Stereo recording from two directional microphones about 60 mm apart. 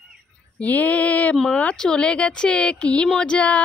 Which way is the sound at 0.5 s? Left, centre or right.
Left.